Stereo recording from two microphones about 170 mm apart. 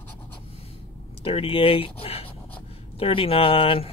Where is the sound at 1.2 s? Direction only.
35° left (ahead or behind).